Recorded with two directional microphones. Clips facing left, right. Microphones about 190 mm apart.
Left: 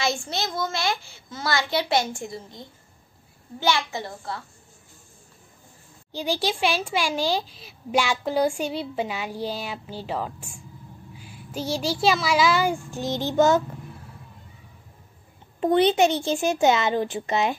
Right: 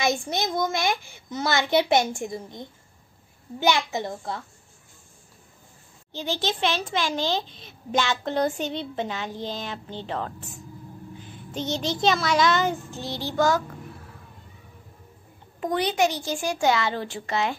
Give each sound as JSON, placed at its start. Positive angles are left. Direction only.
{"t": 0.0, "sound": "a child's voice", "side_deg": -15}
{"t": 6.1, "sound": "a child's voice", "side_deg": 15}
{"t": 15.6, "sound": "a child's voice", "side_deg": 25}